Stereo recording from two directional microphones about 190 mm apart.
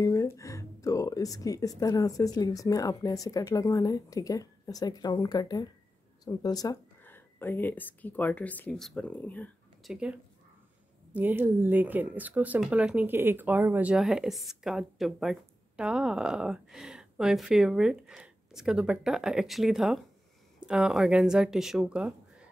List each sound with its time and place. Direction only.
0.0 s speech: 15° left (ahead or behind)
11.1 s speech: 10° right (ahead or behind)